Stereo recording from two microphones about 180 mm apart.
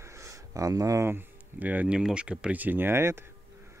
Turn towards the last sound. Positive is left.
turn(degrees=-15)  # may be behind; listen again after turning